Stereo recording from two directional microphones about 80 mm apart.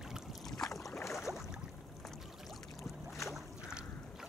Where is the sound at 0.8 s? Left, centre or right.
Left.